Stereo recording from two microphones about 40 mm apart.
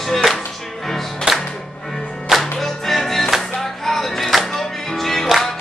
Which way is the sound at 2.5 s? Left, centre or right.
Centre.